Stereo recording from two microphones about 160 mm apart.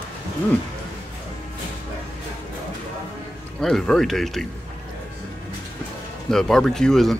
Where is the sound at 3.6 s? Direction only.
5° left (ahead or behind).